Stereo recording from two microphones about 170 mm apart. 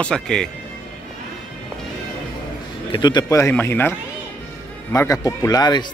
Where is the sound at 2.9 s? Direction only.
25° left (ahead or behind).